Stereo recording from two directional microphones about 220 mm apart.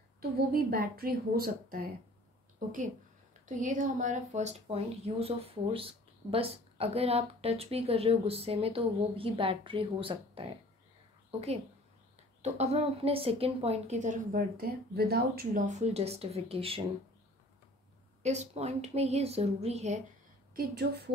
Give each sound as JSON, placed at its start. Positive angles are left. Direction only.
{"t": 0.2, "sound": "speech", "side_deg": -45}
{"t": 3.4, "sound": "a woman's voice", "side_deg": -35}
{"t": 18.2, "sound": "a woman's voice", "side_deg": -30}
{"t": 20.5, "sound": "speech", "side_deg": -45}